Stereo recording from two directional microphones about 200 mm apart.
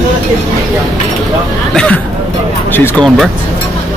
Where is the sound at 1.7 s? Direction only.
5° left (ahead or behind).